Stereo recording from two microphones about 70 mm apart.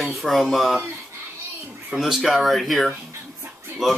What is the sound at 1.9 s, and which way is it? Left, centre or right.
Speech, centre.